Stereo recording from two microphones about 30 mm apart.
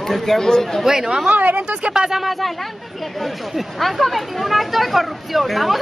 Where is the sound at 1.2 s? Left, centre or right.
Right.